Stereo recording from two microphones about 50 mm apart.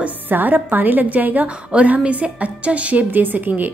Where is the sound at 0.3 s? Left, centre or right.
Right.